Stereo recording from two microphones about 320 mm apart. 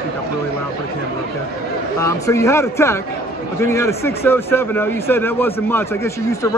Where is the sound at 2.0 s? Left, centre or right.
Centre.